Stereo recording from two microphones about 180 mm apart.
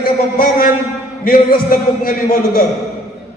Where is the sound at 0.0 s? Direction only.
55° left (ahead or behind).